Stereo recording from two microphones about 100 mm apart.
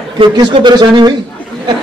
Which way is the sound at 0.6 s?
45° right (ahead or behind).